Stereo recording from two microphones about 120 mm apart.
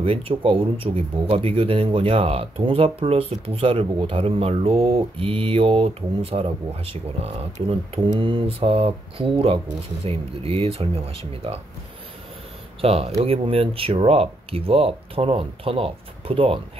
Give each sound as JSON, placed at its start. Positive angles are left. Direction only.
{"t": 0.0, "sound": "speech", "side_deg": -50}
{"t": 12.8, "sound": "speech", "side_deg": -55}